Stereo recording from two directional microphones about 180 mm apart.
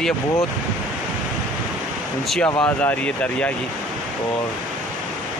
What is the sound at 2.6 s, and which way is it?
Speech, 10° left (ahead or behind).